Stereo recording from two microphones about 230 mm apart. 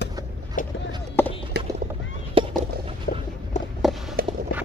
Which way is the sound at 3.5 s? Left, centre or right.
Left.